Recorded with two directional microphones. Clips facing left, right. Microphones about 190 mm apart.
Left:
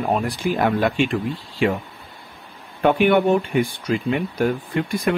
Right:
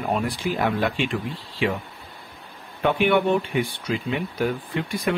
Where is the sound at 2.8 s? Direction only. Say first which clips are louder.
Left 4 dB; 45° left (ahead or behind).